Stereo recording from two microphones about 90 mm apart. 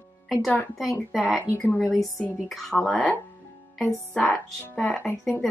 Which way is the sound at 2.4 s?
Centre (ahead or behind).